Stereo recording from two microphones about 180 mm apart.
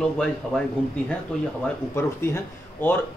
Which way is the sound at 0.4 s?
5° right (ahead or behind).